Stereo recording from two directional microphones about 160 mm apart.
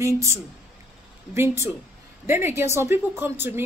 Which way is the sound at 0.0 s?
20° right (ahead or behind).